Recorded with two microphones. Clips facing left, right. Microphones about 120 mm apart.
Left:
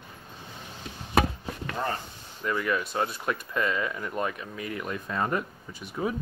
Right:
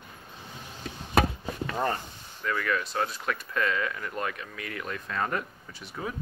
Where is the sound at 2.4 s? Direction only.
15° left (ahead or behind).